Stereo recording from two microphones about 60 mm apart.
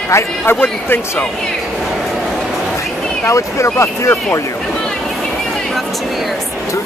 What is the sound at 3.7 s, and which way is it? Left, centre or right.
Speech, left.